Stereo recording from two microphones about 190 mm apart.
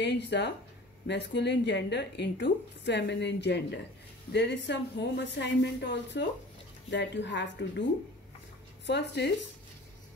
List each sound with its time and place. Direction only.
0.0 s a woman's voice: 65° left (ahead or behind)
8.8 s speech: 65° left (ahead or behind)